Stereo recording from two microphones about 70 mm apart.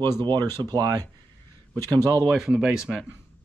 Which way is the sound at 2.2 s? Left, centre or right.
Centre.